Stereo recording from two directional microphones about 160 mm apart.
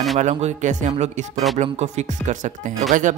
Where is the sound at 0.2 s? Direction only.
45° right (ahead or behind).